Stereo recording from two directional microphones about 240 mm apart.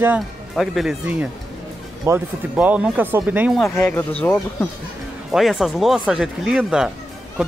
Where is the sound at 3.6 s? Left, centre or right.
Centre.